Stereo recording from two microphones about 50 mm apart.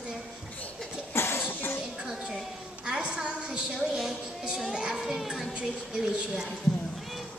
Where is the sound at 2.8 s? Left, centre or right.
Centre.